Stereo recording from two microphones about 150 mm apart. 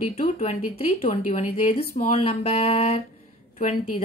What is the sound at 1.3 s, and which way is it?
Speech, 60° left (ahead or behind).